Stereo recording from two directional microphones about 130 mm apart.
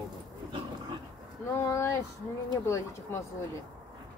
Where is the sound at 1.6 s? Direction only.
20° left (ahead or behind).